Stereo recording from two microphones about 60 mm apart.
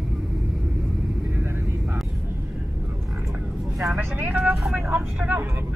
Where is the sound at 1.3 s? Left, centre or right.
Right.